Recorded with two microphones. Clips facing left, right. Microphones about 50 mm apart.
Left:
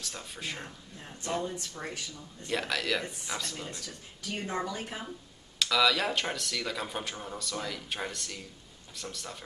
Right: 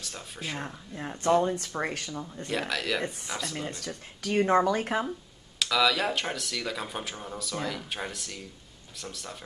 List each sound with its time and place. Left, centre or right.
0.0 s speech: centre
0.9 s speech: right
2.4 s speech: centre
3.5 s speech: right
3.8 s speech: right
5.6 s speech: centre